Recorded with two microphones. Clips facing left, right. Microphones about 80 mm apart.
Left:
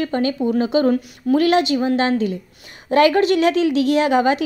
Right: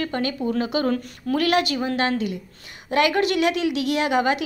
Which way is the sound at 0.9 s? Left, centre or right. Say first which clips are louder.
Left 6 dB; centre.